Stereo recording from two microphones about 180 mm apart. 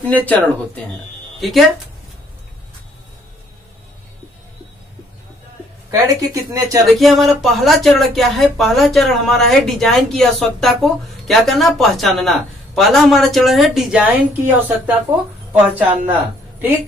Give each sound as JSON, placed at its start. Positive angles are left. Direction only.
{"t": 0.0, "sound": "speech", "side_deg": 10}
{"t": 1.4, "sound": "speech", "side_deg": 0}
{"t": 5.9, "sound": "speech", "side_deg": -20}
{"t": 6.9, "sound": "speech", "side_deg": 0}
{"t": 15.6, "sound": "speech", "side_deg": -10}